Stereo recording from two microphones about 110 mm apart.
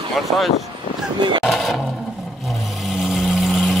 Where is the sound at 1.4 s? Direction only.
Centre (ahead or behind).